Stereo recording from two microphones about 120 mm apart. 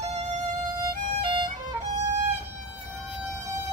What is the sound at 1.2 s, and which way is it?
Music, 45° right (ahead or behind).